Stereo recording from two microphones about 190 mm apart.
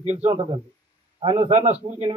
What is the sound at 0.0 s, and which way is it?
A man's voice, 35° right (ahead or behind).